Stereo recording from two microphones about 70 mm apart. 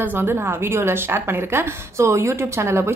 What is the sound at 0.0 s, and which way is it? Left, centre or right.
A woman's voice, right.